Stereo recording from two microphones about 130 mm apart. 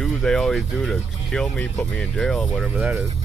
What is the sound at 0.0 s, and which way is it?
Speech, 5° left (ahead or behind).